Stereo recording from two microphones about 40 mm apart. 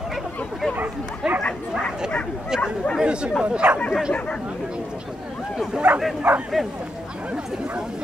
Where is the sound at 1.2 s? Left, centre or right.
Centre.